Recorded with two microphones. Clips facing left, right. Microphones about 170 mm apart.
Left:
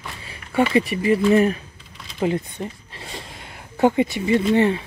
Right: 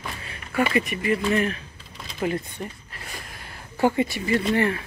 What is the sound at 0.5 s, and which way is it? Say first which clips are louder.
Speech: left 4 dB; 30° left (ahead or behind).